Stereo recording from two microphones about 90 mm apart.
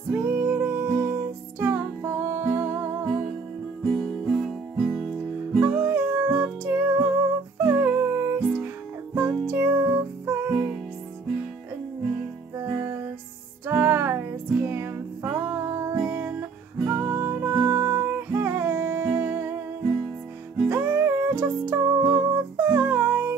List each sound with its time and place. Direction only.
0.1 s music: 20° right (ahead or behind)
3.8 s music: 5° left (ahead or behind)
5.6 s music: 20° right (ahead or behind)
12.5 s music: 30° right (ahead or behind)
16.9 s music: 35° right (ahead or behind)
20.6 s music: 20° right (ahead or behind)